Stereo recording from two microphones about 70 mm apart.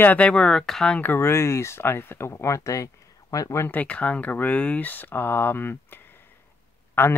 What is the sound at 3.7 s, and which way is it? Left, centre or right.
Speech, left.